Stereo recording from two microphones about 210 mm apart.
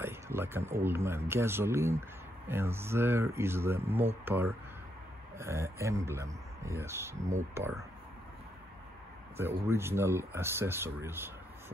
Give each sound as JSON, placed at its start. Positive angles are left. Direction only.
{"t": 0.0, "sound": "speech", "side_deg": -10}
{"t": 7.2, "sound": "speech", "side_deg": -35}
{"t": 9.4, "sound": "speech", "side_deg": -10}